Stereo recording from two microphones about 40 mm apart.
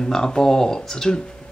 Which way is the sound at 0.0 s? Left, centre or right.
Centre.